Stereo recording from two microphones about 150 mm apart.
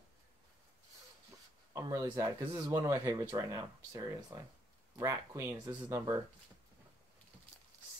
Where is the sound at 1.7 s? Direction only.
25° right (ahead or behind).